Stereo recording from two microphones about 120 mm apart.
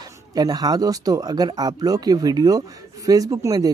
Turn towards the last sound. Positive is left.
turn(degrees=-30)  # may be behind; listen again after turning